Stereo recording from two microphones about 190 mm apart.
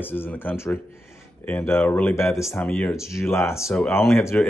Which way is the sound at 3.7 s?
Centre (ahead or behind).